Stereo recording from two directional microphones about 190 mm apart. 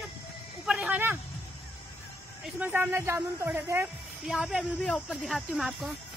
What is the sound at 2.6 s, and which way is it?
Speech, 10° right (ahead or behind).